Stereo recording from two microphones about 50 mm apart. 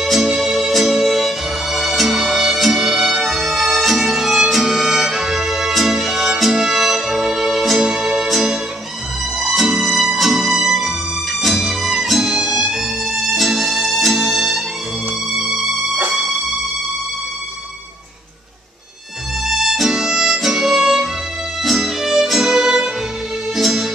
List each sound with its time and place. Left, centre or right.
0.0 s music: centre
19.4 s music: centre